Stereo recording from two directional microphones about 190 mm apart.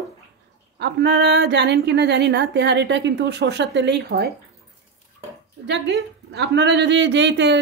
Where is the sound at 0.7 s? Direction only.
65° right (ahead or behind).